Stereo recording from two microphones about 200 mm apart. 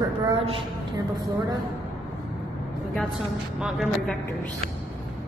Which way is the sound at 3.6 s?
Centre (ahead or behind).